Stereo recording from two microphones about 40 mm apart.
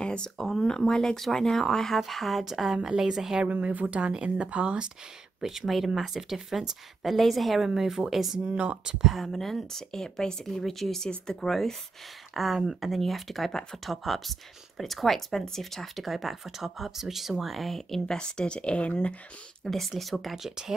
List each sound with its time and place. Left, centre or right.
0.0 s a sound: left
0.4 s speech: centre
2.4 s speech: centre
3.4 s a woman's voice: right
5.4 s speech: centre
7.0 s speech: centre
10.4 s speech: centre
12.6 s speech: centre
13.5 s speech: centre
13.8 s speech: centre; by 19.1 s left
19.6 s speech: centre